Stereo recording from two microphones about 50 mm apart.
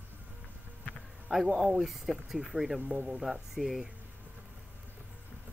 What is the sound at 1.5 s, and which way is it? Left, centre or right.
A woman's voice, centre.